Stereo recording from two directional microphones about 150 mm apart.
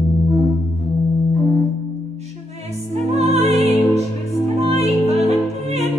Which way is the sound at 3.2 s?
45° right (ahead or behind).